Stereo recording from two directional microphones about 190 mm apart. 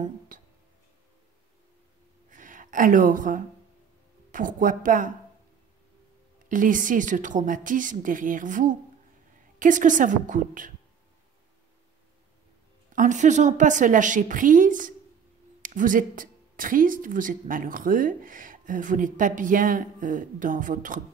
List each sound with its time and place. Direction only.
0.3 s music: 45° right (ahead or behind)
2.3 s speech: 45° right (ahead or behind)
6.5 s speech: 45° right (ahead or behind)
12.9 s a woman's voice: 40° right (ahead or behind)